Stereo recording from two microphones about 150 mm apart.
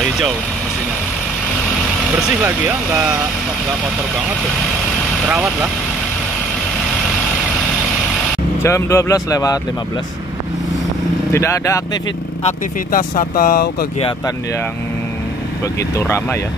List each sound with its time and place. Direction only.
2.4 s speech: 5° right (ahead or behind)
5.3 s speech: 5° right (ahead or behind)
8.6 s speech: 20° left (ahead or behind)
11.3 s speech: 20° left (ahead or behind)
12.9 s speech: 70° left (ahead or behind)
16.0 s speech: 15° left (ahead or behind)